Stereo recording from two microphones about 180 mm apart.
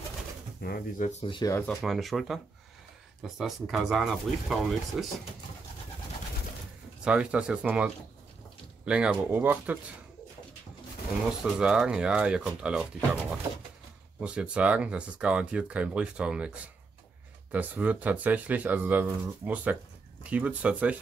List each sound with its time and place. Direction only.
0.6 s speech: 55° left (ahead or behind)
1.2 s speech: 25° left (ahead or behind)
1.7 s speech: centre (ahead or behind)
7.1 s speech: 5° right (ahead or behind)
11.5 s speech: 5° right (ahead or behind)
14.2 s speech: 5° right (ahead or behind)